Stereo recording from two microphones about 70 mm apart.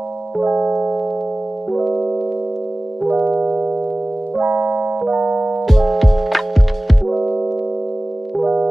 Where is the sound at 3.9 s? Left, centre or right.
Centre.